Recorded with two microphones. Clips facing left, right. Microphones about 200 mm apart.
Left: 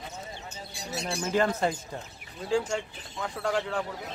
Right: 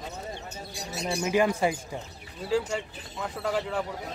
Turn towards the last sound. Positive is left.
turn(degrees=-5)  # may be behind; listen again after turning